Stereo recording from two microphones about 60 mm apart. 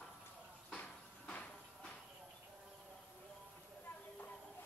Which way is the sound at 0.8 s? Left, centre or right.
Left.